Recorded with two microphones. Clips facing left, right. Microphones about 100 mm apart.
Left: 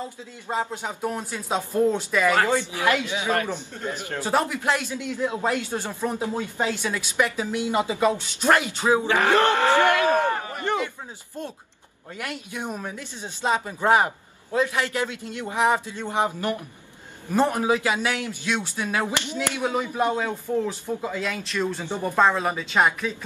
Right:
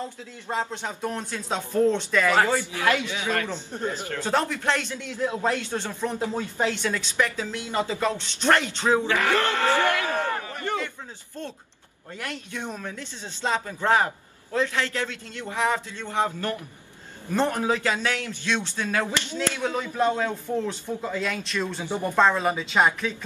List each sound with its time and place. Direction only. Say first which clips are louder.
0.0 s a man's voice: even; 10° left (ahead or behind)
9.1 s a sound: left 4 dB; 20° left (ahead or behind)
12.2 s a man's voice: left 2 dB; 10° left (ahead or behind)